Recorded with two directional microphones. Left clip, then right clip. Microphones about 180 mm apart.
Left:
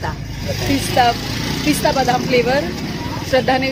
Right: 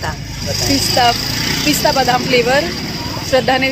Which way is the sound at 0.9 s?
15° right (ahead or behind).